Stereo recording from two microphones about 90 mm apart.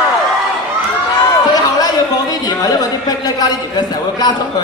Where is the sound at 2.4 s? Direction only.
50° left (ahead or behind).